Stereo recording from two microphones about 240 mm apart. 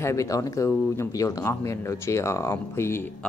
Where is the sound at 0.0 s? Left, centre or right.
Centre.